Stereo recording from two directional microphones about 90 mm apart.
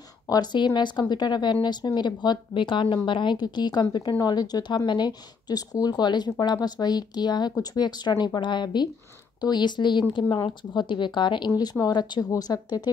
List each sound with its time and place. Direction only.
0.3 s a woman's voice: 50° left (ahead or behind)